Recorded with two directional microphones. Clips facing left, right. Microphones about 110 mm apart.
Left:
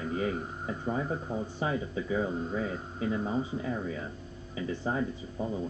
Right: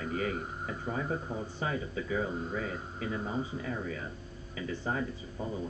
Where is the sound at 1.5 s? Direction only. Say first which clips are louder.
Left 2 dB; 25° left (ahead or behind).